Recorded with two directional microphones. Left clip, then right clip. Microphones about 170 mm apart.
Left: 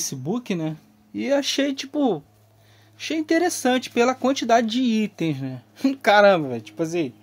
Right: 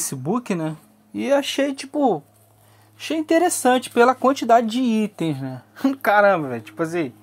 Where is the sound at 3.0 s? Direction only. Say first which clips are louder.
Right 3 dB; centre (ahead or behind).